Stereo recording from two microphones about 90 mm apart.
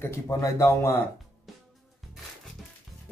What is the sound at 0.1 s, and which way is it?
Speech, 35° left (ahead or behind).